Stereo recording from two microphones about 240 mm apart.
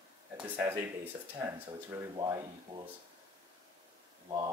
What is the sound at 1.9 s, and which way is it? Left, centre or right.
Speech, centre.